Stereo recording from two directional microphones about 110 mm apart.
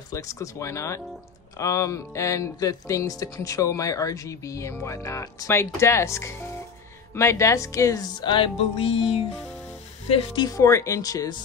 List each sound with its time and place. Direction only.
0.1 s speech: 30° left (ahead or behind)
8.5 s music: 65° left (ahead or behind)
10.4 s speech: 30° left (ahead or behind)